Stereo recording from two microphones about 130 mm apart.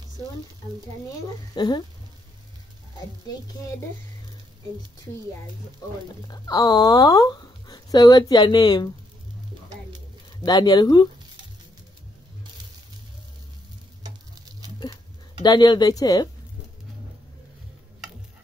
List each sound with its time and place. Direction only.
1.5 s speech: 35° left (ahead or behind)
6.2 s speech: 30° left (ahead or behind)
10.4 s speech: 30° left (ahead or behind)
15.4 s speech: 30° left (ahead or behind)